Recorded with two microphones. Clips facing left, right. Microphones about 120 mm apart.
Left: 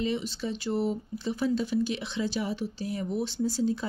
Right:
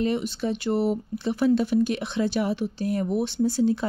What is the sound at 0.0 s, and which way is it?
A woman's voice, 60° right (ahead or behind).